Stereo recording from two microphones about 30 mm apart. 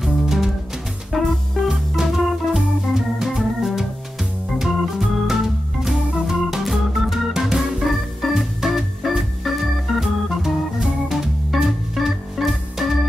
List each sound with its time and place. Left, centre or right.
0.0 s music: centre
1.7 s organ: centre
5.3 s music: centre
6.6 s organ: centre
7.8 s organ: centre
11.5 s organ: centre